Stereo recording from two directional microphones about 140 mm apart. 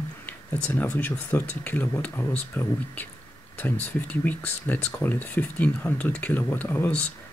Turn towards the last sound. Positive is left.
turn(degrees=10)  # may be behind; listen again after turning